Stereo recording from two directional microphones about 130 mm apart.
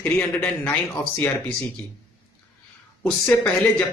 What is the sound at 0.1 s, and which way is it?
Speech, 10° left (ahead or behind).